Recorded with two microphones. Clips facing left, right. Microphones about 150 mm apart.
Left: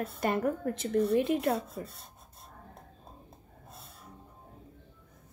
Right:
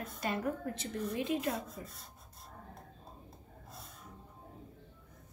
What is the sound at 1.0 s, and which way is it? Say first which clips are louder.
Speech: left 7 dB; 65° left (ahead or behind).